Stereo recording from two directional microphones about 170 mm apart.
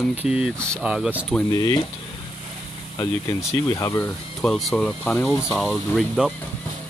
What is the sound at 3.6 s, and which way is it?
Speech, 20° left (ahead or behind).